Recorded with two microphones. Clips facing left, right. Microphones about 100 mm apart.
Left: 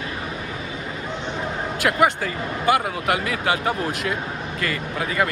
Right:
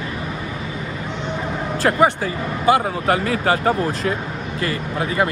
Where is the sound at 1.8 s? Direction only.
35° right (ahead or behind).